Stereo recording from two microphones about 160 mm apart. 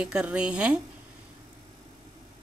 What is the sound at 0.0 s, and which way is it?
Speech, 5° right (ahead or behind).